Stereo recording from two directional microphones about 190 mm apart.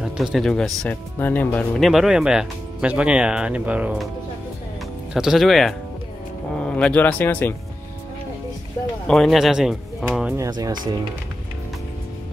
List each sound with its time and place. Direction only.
0.0 s speech: centre (ahead or behind)
5.1 s speech: centre (ahead or behind)
9.0 s speech: centre (ahead or behind)
10.3 s speech: 15° right (ahead or behind)